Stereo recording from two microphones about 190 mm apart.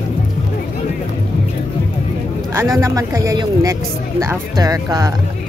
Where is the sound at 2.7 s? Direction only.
15° right (ahead or behind).